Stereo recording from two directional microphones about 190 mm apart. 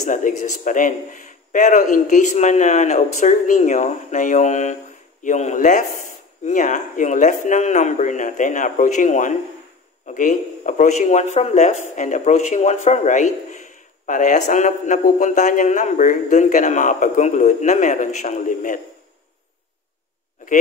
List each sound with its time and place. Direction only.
0.0 s speech: 40° left (ahead or behind)